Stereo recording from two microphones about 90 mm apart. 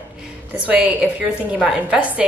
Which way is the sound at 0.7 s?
15° right (ahead or behind).